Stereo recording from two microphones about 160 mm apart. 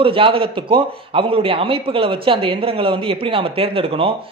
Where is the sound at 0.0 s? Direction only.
35° right (ahead or behind).